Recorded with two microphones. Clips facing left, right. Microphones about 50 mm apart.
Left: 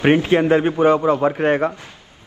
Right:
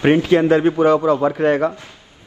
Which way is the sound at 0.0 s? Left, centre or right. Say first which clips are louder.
Right 1 dB; left.